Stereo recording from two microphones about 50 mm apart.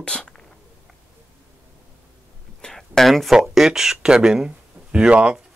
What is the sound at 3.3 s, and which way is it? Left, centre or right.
Speech, centre.